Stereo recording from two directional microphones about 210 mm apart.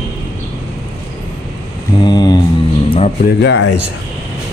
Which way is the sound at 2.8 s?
30° left (ahead or behind).